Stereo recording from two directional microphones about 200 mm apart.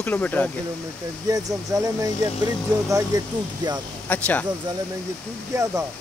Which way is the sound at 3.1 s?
20° right (ahead or behind).